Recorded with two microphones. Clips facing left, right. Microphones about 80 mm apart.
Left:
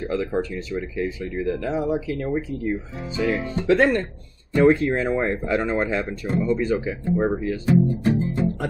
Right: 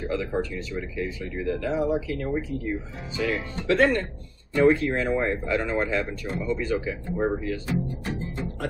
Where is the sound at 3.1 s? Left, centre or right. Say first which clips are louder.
Left 4 dB; left.